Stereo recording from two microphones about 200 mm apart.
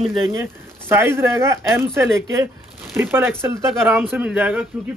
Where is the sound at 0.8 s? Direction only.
10° right (ahead or behind).